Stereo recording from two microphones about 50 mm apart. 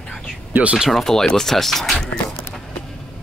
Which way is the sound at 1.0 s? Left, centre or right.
Centre.